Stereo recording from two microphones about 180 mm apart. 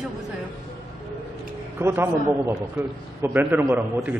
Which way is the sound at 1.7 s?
15° right (ahead or behind).